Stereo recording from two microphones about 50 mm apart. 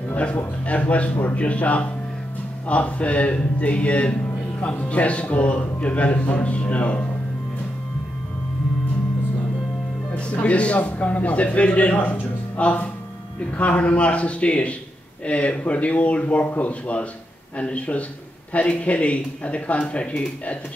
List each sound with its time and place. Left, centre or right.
0.1 s a sound: left
0.7 s speech: left
10.1 s speech: left